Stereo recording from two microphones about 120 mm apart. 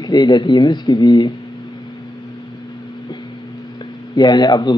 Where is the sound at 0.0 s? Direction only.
35° left (ahead or behind).